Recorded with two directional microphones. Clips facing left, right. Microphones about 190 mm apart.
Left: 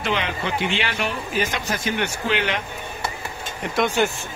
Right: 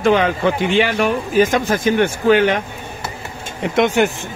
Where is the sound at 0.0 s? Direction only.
45° right (ahead or behind).